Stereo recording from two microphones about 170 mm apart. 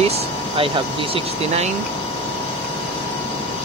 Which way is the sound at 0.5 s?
30° right (ahead or behind).